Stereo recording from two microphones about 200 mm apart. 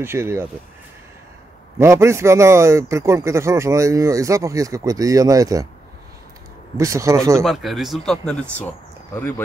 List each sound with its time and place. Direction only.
0.0 s a man's voice: 10° right (ahead or behind)
1.8 s a man's voice: 15° right (ahead or behind)
6.8 s a man's voice: 15° right (ahead or behind)
7.4 s speech: centre (ahead or behind)